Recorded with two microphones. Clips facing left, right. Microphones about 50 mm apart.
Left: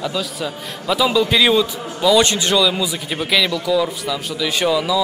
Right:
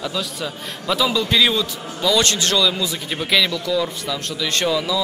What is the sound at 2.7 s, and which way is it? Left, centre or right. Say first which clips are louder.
A man's voice: left 2 dB; centre.